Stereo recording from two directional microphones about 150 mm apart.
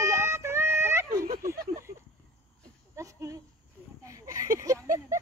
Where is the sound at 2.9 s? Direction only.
20° right (ahead or behind).